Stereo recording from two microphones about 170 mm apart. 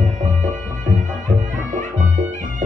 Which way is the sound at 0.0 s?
45° right (ahead or behind).